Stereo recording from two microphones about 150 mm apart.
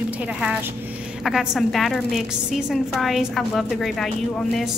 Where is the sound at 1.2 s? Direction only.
Centre (ahead or behind).